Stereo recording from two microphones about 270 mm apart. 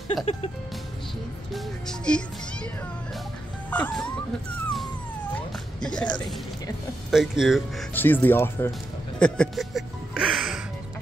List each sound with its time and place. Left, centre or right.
0.1 s music: left
1.5 s speech: centre
3.7 s speech: centre
5.8 s speech: centre